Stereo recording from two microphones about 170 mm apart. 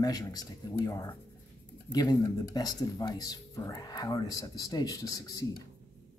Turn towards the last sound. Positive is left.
turn(degrees=20)  # may be behind; listen again after turning